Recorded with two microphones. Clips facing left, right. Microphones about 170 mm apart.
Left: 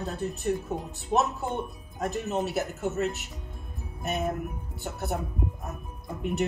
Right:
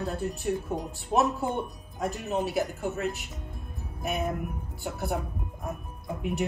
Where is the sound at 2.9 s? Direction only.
Centre (ahead or behind).